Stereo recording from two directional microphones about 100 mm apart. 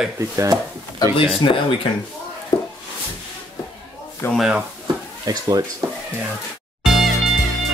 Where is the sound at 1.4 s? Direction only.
55° left (ahead or behind).